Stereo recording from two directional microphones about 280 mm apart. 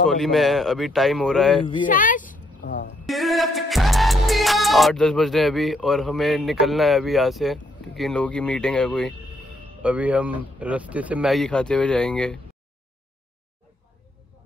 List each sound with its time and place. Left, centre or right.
0.0 s speech: centre
1.9 s a sound: left
3.1 s music: centre
6.6 s speech: centre